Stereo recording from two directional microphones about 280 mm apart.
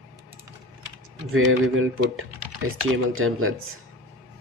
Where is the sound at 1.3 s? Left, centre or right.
Right.